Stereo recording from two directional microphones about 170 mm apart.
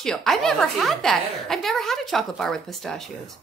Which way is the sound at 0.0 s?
5° left (ahead or behind).